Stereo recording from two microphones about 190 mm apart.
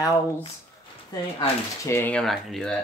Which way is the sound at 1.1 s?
20° left (ahead or behind).